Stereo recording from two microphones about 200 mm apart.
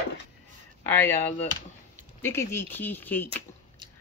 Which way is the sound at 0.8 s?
10° left (ahead or behind).